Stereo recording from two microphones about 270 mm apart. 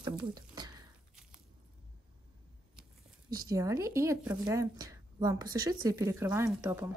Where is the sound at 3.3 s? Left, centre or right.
Centre.